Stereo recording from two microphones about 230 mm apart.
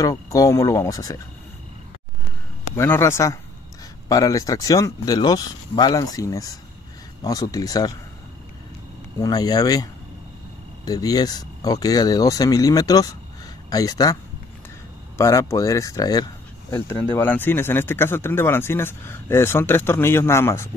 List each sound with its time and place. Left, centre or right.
0.0 s speech: centre
2.7 s speech: centre
9.2 s speech: centre
10.9 s speech: centre
15.1 s speech: centre